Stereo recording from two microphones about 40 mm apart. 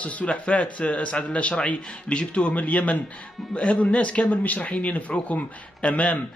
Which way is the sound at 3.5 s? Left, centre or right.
Left.